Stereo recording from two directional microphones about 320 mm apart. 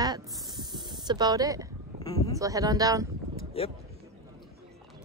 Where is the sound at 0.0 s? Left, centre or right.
Centre.